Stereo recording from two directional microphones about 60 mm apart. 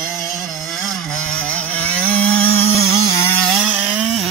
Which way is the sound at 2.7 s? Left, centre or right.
Left.